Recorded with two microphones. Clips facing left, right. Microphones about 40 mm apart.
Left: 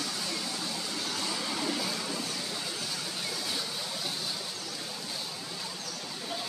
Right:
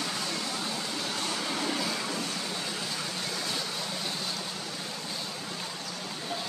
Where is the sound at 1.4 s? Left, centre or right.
Centre.